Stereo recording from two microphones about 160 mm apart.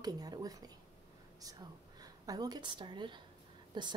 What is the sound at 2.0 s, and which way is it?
A woman's voice, 25° right (ahead or behind).